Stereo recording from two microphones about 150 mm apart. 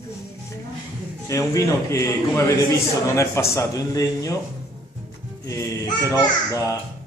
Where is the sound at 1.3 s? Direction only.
20° left (ahead or behind).